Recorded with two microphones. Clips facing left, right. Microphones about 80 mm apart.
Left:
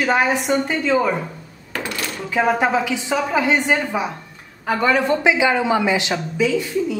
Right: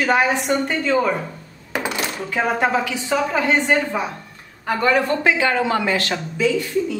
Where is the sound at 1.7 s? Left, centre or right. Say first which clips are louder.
Right 3 dB; centre.